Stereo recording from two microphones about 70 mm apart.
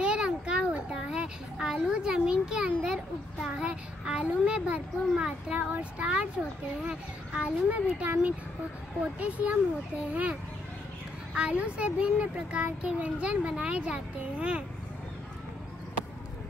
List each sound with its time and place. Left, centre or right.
0.0 s a sound: centre
5.6 s a child's voice: right
11.3 s a child's voice: centre